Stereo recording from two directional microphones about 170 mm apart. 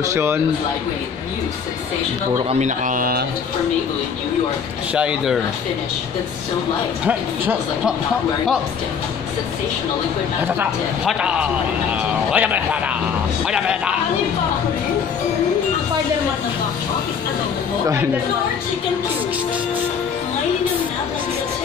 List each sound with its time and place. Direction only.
0.0 s speech: 15° right (ahead or behind)
2.6 s speech: 50° right (ahead or behind)
4.9 s speech: 5° right (ahead or behind)
7.1 s speech: 10° right (ahead or behind)
10.4 s speech: 10° right (ahead or behind)